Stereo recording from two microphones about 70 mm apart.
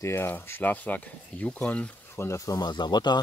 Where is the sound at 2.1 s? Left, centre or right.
Left.